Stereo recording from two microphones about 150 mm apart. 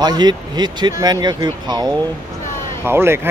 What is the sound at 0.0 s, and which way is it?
Speech, 25° right (ahead or behind).